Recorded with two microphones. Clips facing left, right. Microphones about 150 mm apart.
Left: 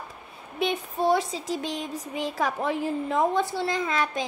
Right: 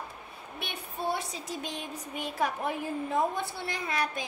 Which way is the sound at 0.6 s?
90° left.